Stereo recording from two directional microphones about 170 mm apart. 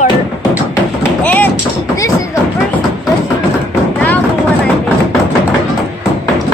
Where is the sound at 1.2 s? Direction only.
10° left (ahead or behind).